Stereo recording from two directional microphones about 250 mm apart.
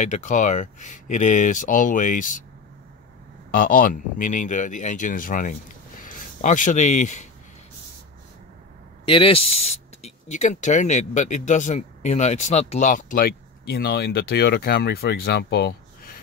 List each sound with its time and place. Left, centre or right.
0.0 s speech: left
3.5 s speech: left
9.0 s speech: left